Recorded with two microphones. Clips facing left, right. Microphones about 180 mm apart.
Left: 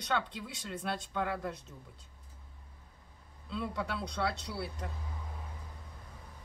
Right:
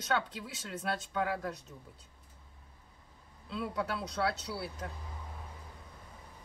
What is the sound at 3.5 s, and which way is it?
Speech, 5° right (ahead or behind).